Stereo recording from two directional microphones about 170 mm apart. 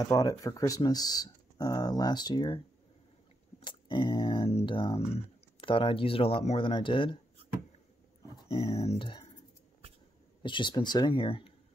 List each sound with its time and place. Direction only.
0.1 s speech: 20° left (ahead or behind)
8.8 s speech: 30° left (ahead or behind)
10.4 s speech: 30° left (ahead or behind)